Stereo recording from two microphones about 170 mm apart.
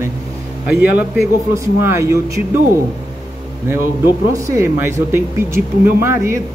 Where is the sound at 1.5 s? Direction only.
15° right (ahead or behind).